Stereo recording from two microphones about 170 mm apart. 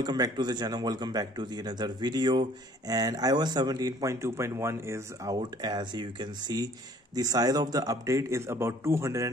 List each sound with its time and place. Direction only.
0.0 s speech: 25° right (ahead or behind)